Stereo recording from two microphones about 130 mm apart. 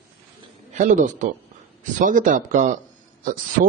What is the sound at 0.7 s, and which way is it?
Speech, 75° right (ahead or behind).